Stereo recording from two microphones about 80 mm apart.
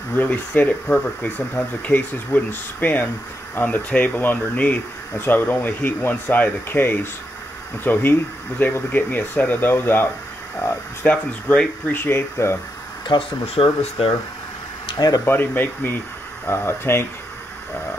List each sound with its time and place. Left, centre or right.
0.1 s speech: left
11.2 s speech: centre
11.9 s speech: left
13.6 s speech: left
14.9 s speech: left
15.2 s speech: left